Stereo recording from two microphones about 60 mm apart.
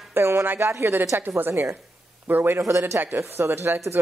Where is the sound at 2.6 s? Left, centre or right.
Right.